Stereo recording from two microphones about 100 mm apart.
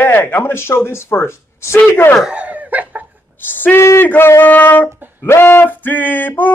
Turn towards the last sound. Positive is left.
turn(degrees=15)  # may be behind; listen again after turning